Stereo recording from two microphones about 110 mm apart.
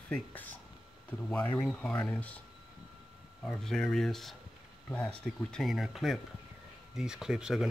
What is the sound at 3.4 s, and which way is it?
Speech, 5° left (ahead or behind).